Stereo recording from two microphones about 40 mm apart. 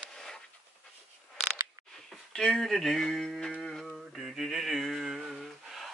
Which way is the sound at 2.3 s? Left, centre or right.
Centre.